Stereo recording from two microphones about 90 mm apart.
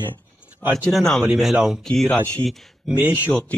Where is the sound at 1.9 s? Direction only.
10° left (ahead or behind).